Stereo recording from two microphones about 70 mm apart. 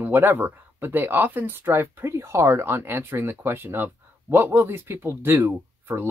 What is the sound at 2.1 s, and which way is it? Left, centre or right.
Speech, right.